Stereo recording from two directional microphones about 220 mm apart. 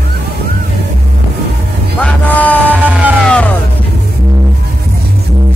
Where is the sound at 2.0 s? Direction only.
5° left (ahead or behind).